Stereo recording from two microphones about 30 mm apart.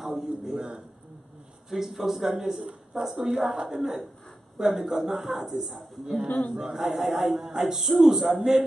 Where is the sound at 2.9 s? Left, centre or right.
Right.